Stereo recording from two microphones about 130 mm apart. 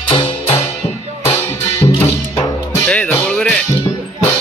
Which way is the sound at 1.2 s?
20° left (ahead or behind).